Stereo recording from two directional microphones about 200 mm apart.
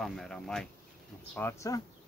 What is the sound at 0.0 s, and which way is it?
Speech, centre (ahead or behind).